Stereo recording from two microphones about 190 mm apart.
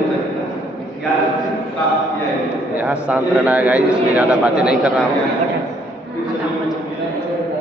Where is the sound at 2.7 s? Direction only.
10° right (ahead or behind).